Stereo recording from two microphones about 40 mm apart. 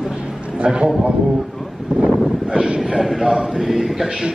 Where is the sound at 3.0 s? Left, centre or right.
Centre.